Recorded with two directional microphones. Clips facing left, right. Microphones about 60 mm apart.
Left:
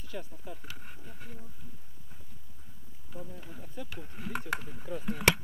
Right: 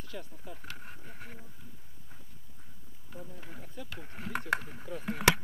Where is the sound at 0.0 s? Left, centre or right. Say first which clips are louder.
Left 2 dB; centre.